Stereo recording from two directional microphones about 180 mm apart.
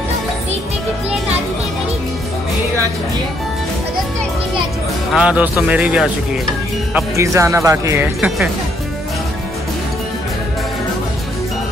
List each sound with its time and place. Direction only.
5.1 s a man's voice: 5° right (ahead or behind)
7.2 s a man's voice: 15° right (ahead or behind)